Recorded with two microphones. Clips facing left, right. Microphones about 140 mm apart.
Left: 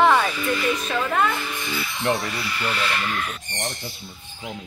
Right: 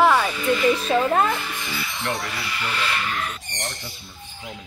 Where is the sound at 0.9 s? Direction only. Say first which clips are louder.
Right 1 dB; 35° right (ahead or behind).